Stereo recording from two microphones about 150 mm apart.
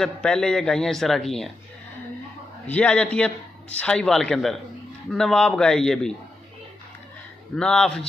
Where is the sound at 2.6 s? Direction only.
10° left (ahead or behind).